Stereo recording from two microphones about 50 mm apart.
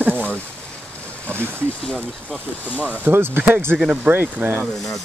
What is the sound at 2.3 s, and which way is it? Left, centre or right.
Speech, left.